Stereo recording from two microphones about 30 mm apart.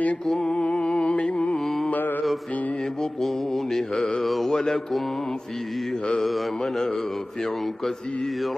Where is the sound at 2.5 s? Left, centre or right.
Left.